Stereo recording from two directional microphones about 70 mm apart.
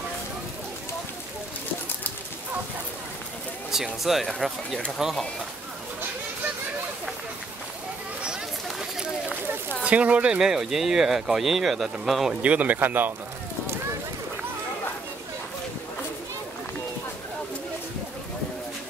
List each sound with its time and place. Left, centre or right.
3.7 s speech: centre
9.8 s speech: centre
12.4 s a man's voice: centre